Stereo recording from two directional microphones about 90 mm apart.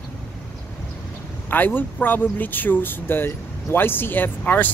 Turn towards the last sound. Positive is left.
turn(degrees=20)  # may be behind; listen again after turning